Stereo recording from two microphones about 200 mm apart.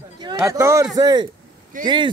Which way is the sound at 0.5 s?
15° right (ahead or behind).